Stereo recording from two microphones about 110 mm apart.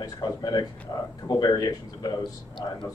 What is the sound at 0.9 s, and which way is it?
A man's voice, 25° left (ahead or behind).